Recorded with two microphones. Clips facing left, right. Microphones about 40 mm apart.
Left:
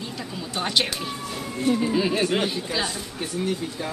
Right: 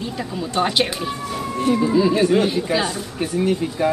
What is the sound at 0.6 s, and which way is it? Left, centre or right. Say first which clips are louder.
Speech: right 4 dB; centre.